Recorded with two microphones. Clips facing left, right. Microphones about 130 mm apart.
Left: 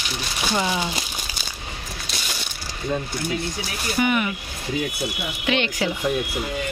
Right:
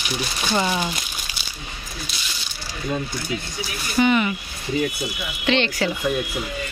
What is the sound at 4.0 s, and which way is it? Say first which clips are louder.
Speech: right 3 dB; 5° left (ahead or behind).